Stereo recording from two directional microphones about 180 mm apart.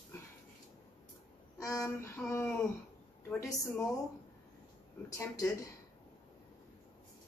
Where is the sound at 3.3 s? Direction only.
15° left (ahead or behind).